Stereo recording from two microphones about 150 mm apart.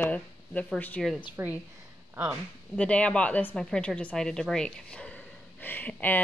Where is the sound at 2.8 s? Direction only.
10° left (ahead or behind).